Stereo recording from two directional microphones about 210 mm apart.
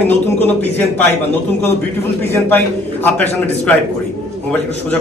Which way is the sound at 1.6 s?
10° left (ahead or behind).